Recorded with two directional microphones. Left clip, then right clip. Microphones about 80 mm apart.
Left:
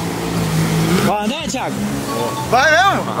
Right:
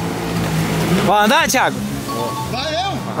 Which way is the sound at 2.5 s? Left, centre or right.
Left.